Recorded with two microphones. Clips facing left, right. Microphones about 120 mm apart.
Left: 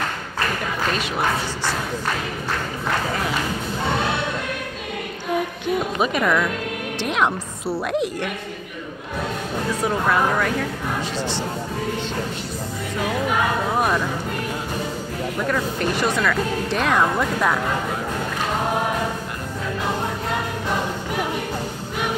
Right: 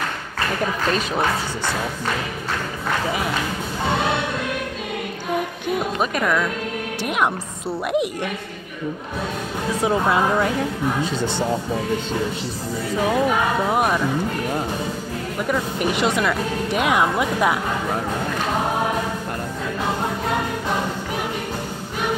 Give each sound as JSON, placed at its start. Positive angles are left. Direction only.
{"t": 5.9, "sound": "speech", "side_deg": 0}
{"t": 9.8, "sound": "speech", "side_deg": -20}
{"t": 13.7, "sound": "speech", "side_deg": -10}
{"t": 15.4, "sound": "speech", "side_deg": -15}